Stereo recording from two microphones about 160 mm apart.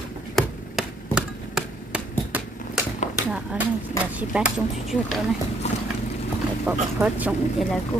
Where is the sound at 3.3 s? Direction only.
5° right (ahead or behind).